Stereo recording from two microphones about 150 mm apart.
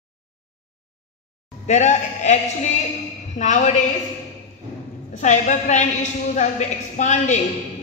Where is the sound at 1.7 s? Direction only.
50° left (ahead or behind).